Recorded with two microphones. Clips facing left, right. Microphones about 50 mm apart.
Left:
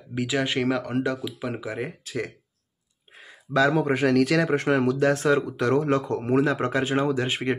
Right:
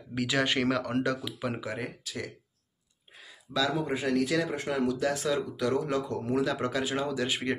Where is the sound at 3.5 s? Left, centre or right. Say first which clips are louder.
Left 8 dB; left.